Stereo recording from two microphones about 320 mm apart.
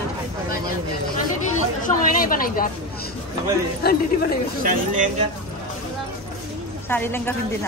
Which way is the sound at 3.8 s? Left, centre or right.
Left.